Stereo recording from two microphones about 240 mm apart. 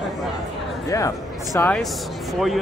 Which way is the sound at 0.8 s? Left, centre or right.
Centre.